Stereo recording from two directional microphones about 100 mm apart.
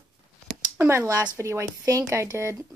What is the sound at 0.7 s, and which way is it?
Speech, 25° right (ahead or behind).